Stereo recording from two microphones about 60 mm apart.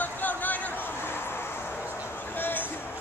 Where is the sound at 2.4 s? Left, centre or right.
Left.